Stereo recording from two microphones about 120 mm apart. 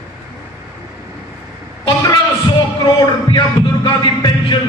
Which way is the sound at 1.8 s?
35° left (ahead or behind).